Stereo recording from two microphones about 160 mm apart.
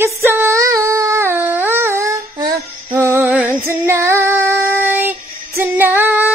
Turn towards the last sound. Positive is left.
turn(degrees=-15)  # may be behind; listen again after turning